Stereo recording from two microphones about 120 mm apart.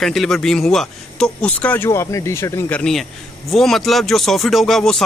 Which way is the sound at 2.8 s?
5° left (ahead or behind).